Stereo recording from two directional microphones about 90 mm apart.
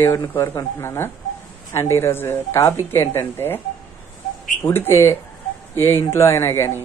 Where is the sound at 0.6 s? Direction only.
30° left (ahead or behind).